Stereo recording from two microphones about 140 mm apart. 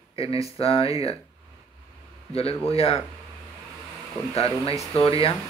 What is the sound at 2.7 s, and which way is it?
Speech, 45° left (ahead or behind).